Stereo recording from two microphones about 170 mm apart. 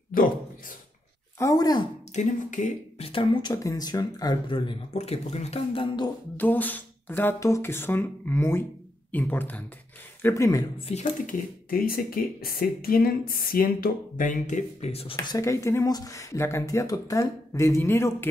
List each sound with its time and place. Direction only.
0.1 s speech: 55° left (ahead or behind)
1.4 s speech: 20° left (ahead or behind)
2.1 s speech: 45° left (ahead or behind)
3.1 s speech: 30° left (ahead or behind)
3.5 s speech: 20° left (ahead or behind)
6.3 s speech: 10° left (ahead or behind)
10.9 s speech: 35° left (ahead or behind)
11.7 s speech: 60° left (ahead or behind); by 15.3 s 35° left (ahead or behind)
15.3 s speech: 15° left (ahead or behind)